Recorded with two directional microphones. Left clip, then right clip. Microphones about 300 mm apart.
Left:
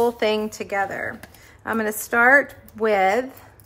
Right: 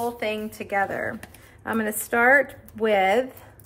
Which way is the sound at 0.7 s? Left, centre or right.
Centre.